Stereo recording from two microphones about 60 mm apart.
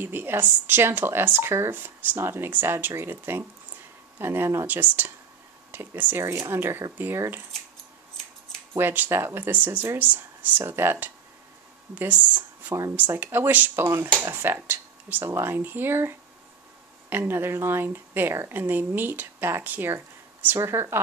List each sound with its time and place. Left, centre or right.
0.0 s speech: right
1.7 s speech: right
4.6 s speech: right
6.1 s speech: right
8.7 s speech: right
10.6 s speech: right
11.9 s speech: right
20.5 s speech: right